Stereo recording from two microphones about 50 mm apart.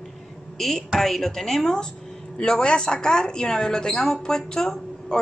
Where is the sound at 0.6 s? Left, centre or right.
Centre.